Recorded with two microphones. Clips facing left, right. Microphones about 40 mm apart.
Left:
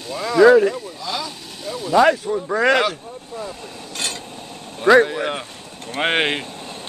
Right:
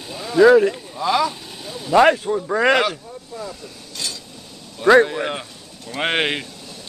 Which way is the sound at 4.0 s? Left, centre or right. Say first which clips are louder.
Left 3 dB; left.